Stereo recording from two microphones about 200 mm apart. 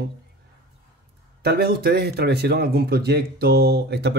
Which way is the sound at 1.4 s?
50° right (ahead or behind).